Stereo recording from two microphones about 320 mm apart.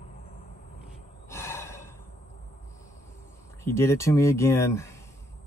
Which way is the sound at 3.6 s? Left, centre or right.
Centre.